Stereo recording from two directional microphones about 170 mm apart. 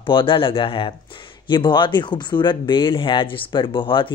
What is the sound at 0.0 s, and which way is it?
A woman's voice, 30° left (ahead or behind).